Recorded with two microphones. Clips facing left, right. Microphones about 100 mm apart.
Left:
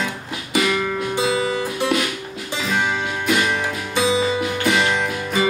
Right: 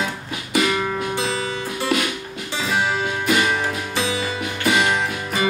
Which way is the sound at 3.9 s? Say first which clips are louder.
Left 8 dB; 20° left (ahead or behind).